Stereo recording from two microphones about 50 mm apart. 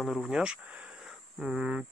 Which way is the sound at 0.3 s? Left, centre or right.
Centre.